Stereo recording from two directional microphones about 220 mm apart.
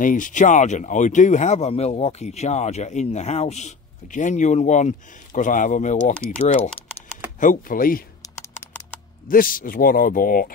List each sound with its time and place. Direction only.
0.0 s speech: 35° left (ahead or behind)
8.2 s typing: 10° left (ahead or behind)
9.3 s speech: 40° left (ahead or behind)